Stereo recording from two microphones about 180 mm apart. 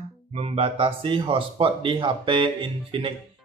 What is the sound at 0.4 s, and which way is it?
Speech, 30° right (ahead or behind).